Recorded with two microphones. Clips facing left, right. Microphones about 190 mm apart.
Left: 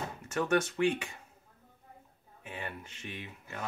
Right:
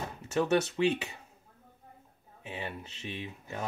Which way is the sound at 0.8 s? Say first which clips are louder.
Right 1 dB; 25° right (ahead or behind).